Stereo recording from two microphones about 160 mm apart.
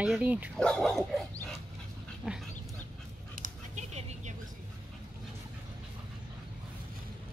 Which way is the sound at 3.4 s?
50° right (ahead or behind).